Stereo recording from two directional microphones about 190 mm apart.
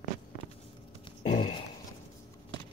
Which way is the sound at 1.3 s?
25° left (ahead or behind).